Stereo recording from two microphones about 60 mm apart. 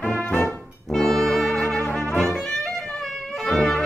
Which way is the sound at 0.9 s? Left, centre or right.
Centre.